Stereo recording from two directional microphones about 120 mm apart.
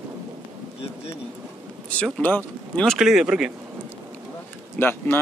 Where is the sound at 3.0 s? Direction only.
5° right (ahead or behind).